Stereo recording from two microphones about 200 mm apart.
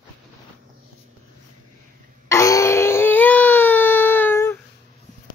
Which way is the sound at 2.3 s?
15° left (ahead or behind).